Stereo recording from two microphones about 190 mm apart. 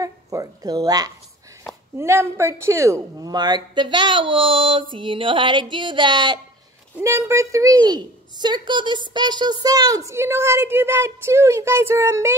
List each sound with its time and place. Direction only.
0.0 s a woman's voice: 20° right (ahead or behind)